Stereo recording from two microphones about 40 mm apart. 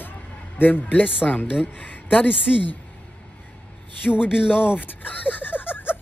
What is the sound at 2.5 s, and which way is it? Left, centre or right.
Speech, left.